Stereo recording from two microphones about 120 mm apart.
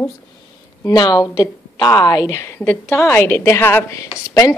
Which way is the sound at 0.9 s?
35° left (ahead or behind).